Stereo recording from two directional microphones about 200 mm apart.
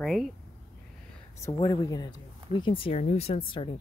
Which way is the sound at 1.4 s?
20° left (ahead or behind).